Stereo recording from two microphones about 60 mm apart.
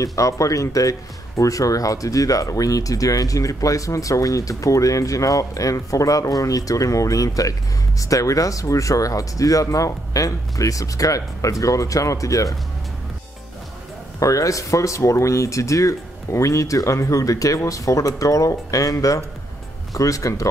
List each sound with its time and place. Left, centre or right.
0.0 s speech: left
14.2 s speech: left